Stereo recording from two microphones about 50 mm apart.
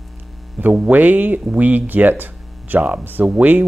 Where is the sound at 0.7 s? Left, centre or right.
Right.